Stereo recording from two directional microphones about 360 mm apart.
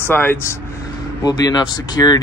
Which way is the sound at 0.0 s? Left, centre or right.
Centre.